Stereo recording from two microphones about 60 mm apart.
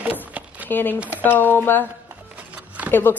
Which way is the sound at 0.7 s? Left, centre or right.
Left.